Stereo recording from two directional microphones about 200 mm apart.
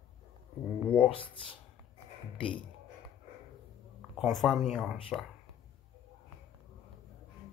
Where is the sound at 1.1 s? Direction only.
25° left (ahead or behind).